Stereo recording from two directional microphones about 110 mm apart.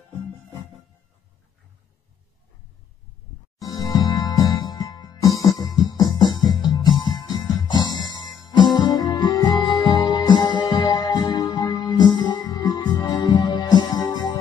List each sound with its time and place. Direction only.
3.5 s music: 30° left (ahead or behind)